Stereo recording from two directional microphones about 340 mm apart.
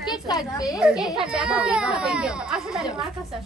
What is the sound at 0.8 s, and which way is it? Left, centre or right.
Speech, centre.